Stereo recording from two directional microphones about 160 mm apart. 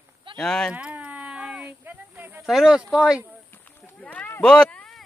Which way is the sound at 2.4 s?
Centre (ahead or behind).